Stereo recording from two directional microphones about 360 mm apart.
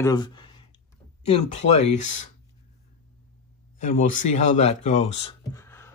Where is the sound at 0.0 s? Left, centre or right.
Centre.